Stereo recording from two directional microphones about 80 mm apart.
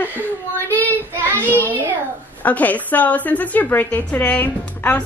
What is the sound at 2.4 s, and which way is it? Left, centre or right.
A woman's voice, centre.